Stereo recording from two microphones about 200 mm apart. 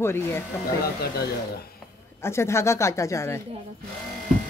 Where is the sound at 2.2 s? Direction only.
15° left (ahead or behind).